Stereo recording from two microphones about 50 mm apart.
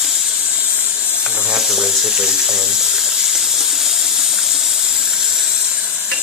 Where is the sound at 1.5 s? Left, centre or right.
Centre.